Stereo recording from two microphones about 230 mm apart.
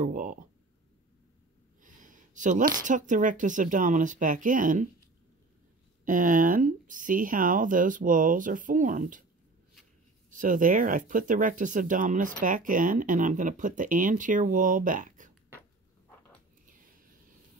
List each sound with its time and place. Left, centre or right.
0.0 s speech: right
1.8 s speech: right
6.0 s speech: right
10.3 s speech: right